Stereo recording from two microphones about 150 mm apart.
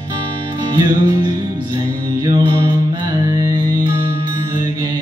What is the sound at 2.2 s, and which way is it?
Mantra, 30° right (ahead or behind).